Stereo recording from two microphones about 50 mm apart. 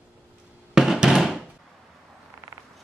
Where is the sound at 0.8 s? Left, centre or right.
Centre.